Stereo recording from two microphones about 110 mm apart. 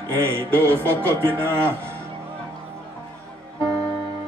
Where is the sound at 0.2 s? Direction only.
20° right (ahead or behind).